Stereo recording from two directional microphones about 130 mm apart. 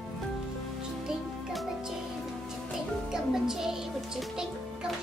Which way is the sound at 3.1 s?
5° right (ahead or behind).